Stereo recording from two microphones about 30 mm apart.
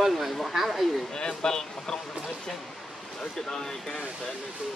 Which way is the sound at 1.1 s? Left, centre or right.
Left.